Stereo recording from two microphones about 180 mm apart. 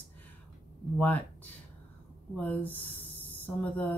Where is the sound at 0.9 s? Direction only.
10° left (ahead or behind).